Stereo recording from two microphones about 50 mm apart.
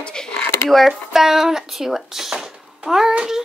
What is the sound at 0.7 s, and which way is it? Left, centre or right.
Speech, centre.